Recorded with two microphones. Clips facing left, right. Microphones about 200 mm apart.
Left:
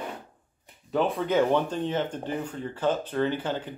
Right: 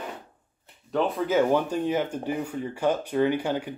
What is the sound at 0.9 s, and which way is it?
Speech, centre (ahead or behind).